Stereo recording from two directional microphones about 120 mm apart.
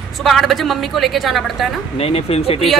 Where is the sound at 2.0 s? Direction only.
55° left (ahead or behind).